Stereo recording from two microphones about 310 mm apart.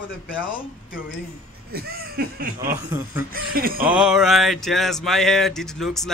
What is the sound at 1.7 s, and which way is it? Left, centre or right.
Speech, right.